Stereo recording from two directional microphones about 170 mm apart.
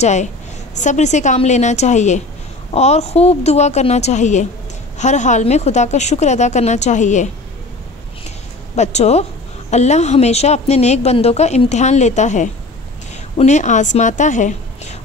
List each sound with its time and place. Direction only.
0.0 s a woman's voice: 45° left (ahead or behind)
8.7 s a woman's voice: 40° left (ahead or behind)